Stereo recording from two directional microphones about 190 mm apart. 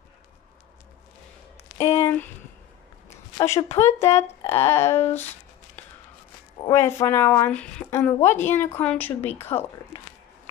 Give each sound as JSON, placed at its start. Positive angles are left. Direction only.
{"t": 1.8, "sound": "a woman's voice", "side_deg": 15}
{"t": 3.1, "sound": "a sound", "side_deg": 15}
{"t": 3.7, "sound": "a woman's voice", "side_deg": 15}
{"t": 6.6, "sound": "a woman's voice", "side_deg": 15}
{"t": 9.5, "sound": "speech", "side_deg": 25}